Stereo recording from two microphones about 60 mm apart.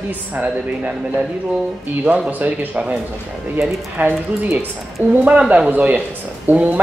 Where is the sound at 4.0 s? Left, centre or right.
Right.